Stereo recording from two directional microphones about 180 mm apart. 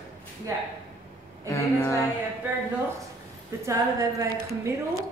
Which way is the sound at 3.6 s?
20° right (ahead or behind).